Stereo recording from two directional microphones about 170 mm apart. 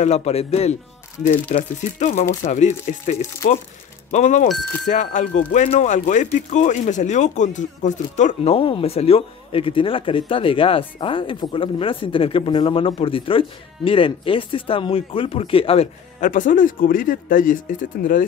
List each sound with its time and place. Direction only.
0.0 s speech: 40° left (ahead or behind)
1.2 s speech: 50° left (ahead or behind)
4.1 s speech: 45° left (ahead or behind)
16.3 s speech: 50° left (ahead or behind)